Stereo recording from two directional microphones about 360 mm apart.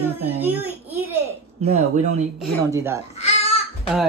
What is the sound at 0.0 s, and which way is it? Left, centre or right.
Speech, centre.